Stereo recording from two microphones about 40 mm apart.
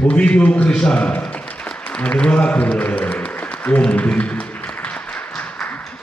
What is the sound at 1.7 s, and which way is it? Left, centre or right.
A man's voice, left.